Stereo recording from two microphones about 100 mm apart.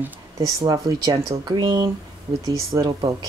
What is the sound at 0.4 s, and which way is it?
Speech, 35° right (ahead or behind).